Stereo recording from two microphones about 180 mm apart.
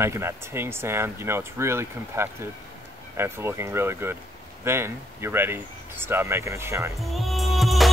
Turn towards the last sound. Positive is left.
turn(degrees=0)  # may be behind; listen again after turning